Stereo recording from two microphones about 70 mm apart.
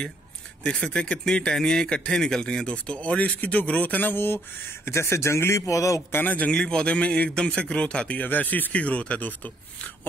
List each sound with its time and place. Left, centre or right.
0.7 s speech: centre; by 4.4 s left
4.8 s a man's voice: left
6.1 s speech: left
6.5 s speech: centre
8.2 s speech: left